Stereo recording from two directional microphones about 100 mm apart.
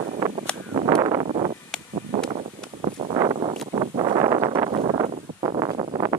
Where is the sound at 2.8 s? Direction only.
70° right (ahead or behind); by 4.5 s 45° right (ahead or behind).